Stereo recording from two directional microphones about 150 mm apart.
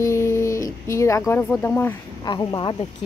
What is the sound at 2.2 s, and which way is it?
Speech, 30° left (ahead or behind).